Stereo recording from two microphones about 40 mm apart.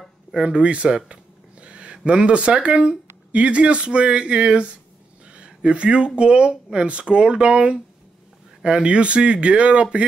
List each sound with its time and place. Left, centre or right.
0.5 s speech: right